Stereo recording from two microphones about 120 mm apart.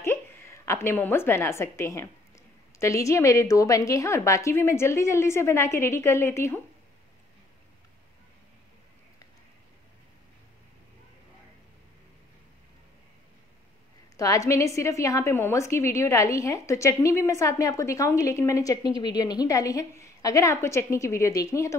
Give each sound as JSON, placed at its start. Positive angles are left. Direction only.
{"t": 0.7, "sound": "a woman's voice", "side_deg": 20}
{"t": 14.1, "sound": "a woman's voice", "side_deg": 30}